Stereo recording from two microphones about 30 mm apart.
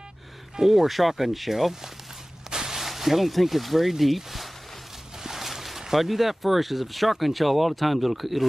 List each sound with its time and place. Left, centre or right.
0.6 s speech: centre
2.5 s a sound: right
2.8 s speech: centre